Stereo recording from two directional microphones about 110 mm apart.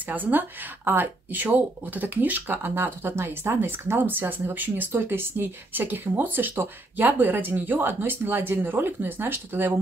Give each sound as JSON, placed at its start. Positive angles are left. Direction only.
{"t": 0.1, "sound": "speech", "side_deg": -15}